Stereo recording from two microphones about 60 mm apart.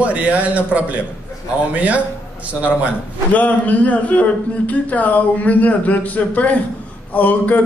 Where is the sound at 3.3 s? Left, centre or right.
Left.